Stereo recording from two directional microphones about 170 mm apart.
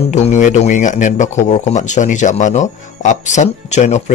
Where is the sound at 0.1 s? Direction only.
45° left (ahead or behind).